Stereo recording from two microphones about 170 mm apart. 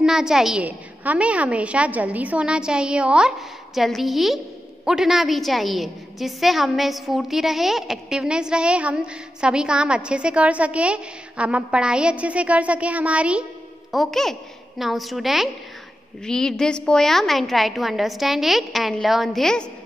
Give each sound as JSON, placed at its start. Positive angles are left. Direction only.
{"t": 0.0, "sound": "a woman's voice", "side_deg": -5}